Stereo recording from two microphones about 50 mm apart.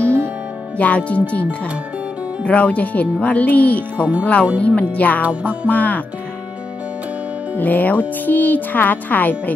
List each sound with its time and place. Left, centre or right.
0.7 s speech: left
5.2 s music: right
5.7 s speech: left
7.5 s speech: left